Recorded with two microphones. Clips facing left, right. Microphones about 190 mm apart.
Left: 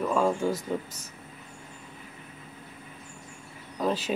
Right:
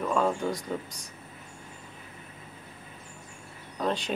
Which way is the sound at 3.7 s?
5° left (ahead or behind).